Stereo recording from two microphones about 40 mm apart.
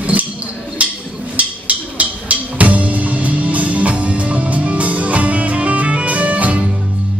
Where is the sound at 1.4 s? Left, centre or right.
Right.